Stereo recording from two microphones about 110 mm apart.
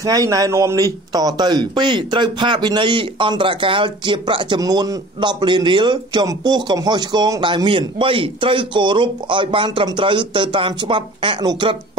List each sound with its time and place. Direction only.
0.0 s speech: 30° right (ahead or behind); by 4.6 s 50° right (ahead or behind)
4.6 s speech: 35° right (ahead or behind)